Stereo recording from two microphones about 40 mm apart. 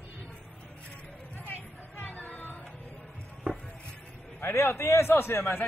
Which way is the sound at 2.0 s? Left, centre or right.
Left.